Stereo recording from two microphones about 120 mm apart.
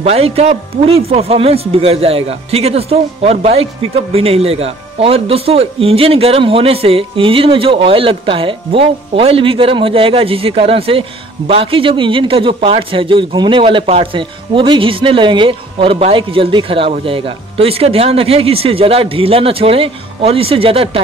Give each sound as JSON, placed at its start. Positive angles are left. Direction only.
{"t": 0.0, "sound": "speech", "side_deg": -60}